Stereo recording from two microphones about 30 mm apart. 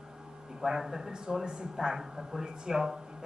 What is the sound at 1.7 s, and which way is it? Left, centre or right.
Speech, centre.